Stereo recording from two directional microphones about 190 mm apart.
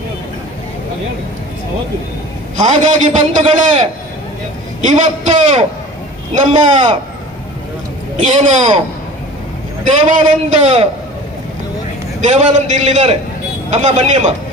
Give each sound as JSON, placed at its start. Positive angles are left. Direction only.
{"t": 2.5, "sound": "a man's voice", "side_deg": -40}
{"t": 8.2, "sound": "a man's voice", "side_deg": -35}
{"t": 10.1, "sound": "a man's voice", "side_deg": -30}
{"t": 12.2, "sound": "a man's voice", "side_deg": -40}